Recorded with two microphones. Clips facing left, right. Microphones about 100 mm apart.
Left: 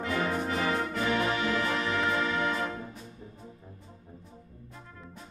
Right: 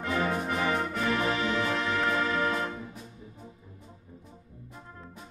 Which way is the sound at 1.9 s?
Centre (ahead or behind).